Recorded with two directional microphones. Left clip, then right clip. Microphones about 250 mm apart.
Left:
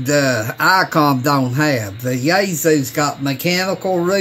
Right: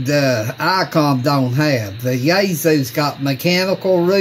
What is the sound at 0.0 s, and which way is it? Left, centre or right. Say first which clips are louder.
Speech: even; centre.